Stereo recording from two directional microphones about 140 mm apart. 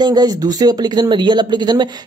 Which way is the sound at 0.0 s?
30° right (ahead or behind).